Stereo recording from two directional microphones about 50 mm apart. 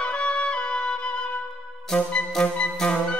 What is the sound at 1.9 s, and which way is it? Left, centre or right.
Music, centre.